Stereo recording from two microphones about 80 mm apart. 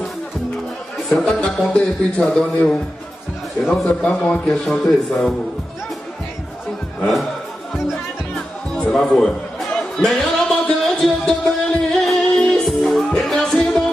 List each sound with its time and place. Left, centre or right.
0.9 s music: centre
1.2 s a man's voice: centre
4.0 s a man's voice: centre
4.6 s speech: centre
7.7 s music: centre
8.9 s a man's voice: centre
10.0 s music: centre